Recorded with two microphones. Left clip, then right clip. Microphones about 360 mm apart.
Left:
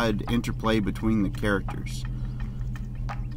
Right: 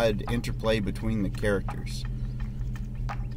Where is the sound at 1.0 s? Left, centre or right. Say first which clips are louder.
Left 6 dB; right.